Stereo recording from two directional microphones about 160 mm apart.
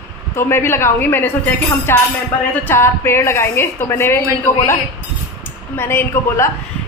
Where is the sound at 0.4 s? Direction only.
15° left (ahead or behind).